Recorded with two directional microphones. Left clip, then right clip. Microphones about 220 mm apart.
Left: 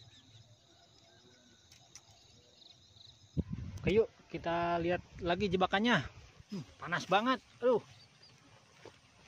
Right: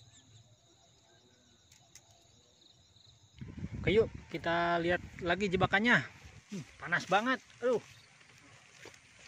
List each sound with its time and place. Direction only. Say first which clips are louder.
3.8 s speech: right 1 dB; 10° right (ahead or behind)